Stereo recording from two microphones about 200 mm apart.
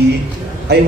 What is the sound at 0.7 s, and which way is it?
Speech, 55° right (ahead or behind).